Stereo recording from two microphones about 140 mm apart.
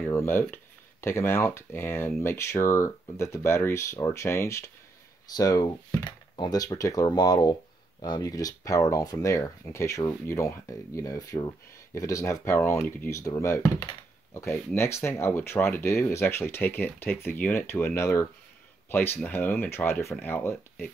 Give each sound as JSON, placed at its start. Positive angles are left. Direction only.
{"t": 0.1, "sound": "speech", "side_deg": 15}